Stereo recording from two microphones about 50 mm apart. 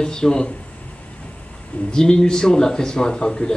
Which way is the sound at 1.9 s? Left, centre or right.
Centre.